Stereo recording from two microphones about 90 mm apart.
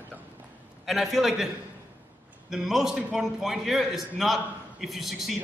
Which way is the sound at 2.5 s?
5° right (ahead or behind).